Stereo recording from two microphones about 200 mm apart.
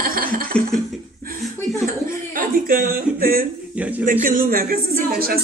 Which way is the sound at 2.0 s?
45° right (ahead or behind).